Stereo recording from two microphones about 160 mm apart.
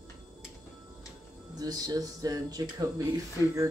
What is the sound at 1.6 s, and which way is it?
Speech, 25° right (ahead or behind).